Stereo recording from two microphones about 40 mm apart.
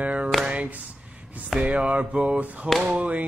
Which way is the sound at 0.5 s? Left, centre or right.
Right.